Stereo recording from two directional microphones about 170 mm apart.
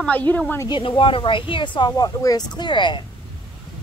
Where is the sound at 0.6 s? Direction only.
30° left (ahead or behind).